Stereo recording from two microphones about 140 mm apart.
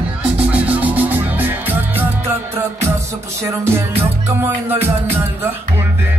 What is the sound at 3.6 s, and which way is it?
Music, 20° right (ahead or behind).